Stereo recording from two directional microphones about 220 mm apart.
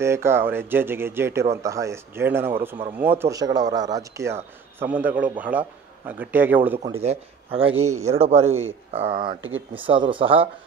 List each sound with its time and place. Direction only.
0.0 s a man's voice: 10° right (ahead or behind)
7.0 s speech: 30° right (ahead or behind)
7.7 s speech: 80° right
8.1 s speech: 30° right (ahead or behind)